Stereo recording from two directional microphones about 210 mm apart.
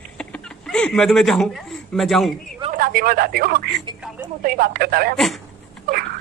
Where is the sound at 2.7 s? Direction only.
40° right (ahead or behind).